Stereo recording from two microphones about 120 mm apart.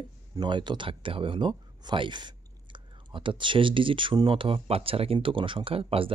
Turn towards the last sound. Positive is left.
turn(degrees=-50)  # may be behind; listen again after turning